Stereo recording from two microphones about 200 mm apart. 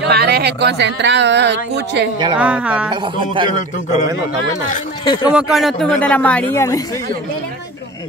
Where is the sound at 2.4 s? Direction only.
5° right (ahead or behind).